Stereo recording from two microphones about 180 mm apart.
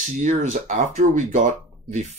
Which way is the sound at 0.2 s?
45° right (ahead or behind).